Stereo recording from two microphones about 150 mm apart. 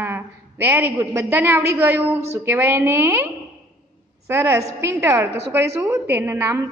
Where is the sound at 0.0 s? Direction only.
15° right (ahead or behind).